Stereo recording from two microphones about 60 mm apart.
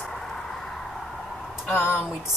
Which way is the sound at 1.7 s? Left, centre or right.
Left.